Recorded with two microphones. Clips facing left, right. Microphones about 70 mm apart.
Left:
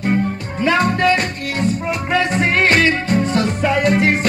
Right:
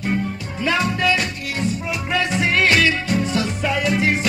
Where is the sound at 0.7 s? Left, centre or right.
Left.